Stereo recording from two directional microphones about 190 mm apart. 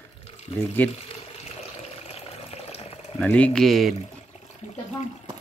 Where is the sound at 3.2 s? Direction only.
5° left (ahead or behind).